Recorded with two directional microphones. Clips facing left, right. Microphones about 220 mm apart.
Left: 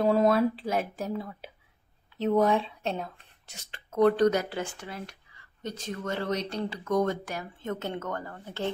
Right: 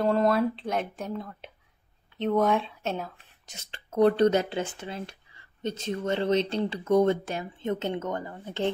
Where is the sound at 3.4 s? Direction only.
25° right (ahead or behind).